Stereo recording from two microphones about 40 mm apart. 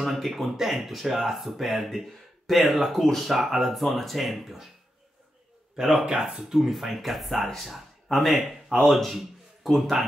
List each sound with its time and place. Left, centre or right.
0.0 s speech: centre
5.8 s speech: centre
6.6 s speech: centre